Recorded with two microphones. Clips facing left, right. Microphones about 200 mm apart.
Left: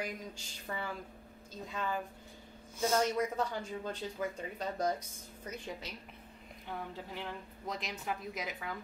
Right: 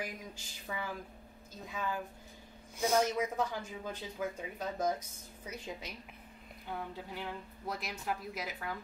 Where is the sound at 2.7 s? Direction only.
15° right (ahead or behind).